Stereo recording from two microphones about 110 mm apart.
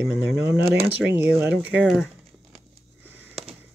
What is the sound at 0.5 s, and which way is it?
Speech, 20° right (ahead or behind).